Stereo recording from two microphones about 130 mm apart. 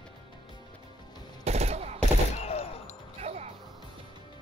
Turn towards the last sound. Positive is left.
turn(degrees=-55)  # may be behind; listen again after turning